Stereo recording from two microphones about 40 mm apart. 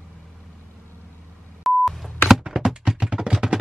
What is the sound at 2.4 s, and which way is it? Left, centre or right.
Music, centre.